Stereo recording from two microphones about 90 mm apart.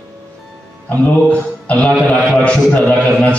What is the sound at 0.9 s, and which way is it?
A man's voice, 15° left (ahead or behind).